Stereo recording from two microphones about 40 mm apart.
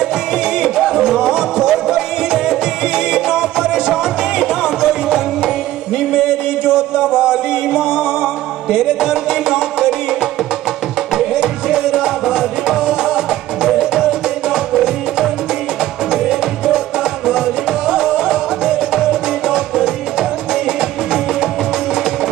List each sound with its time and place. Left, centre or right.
0.6 s music: centre
3.1 s music: centre
6.1 s music: centre
11.3 s music: centre
16.1 s music: centre
17.8 s music: centre